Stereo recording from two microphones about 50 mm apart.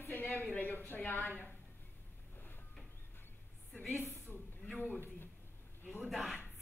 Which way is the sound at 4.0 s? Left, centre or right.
Left.